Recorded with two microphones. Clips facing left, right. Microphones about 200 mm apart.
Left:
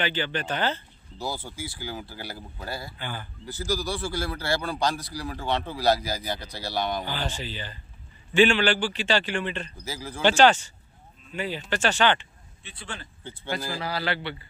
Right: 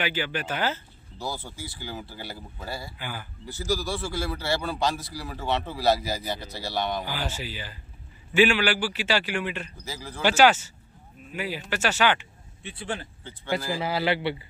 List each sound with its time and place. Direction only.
0.0 s a man's voice: 10° right (ahead or behind)
1.2 s a man's voice: 5° left (ahead or behind)
9.8 s speech: 5° left (ahead or behind)
10.2 s a man's voice: 5° right (ahead or behind)
13.7 s a man's voice: 20° right (ahead or behind)